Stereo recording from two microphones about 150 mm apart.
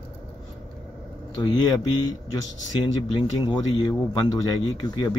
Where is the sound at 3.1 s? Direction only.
30° left (ahead or behind).